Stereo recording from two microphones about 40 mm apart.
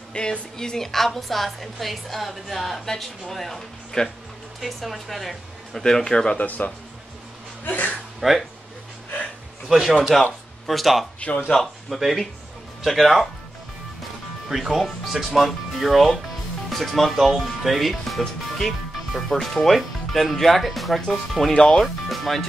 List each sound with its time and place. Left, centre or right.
0.1 s a woman's voice: left; by 5.9 s centre
5.9 s a woman's voice: centre
6.3 s speech: left
8.2 s speech: centre
10.1 s speech: centre
11.1 s speech: left
11.6 s speech: centre
14.5 s speech: centre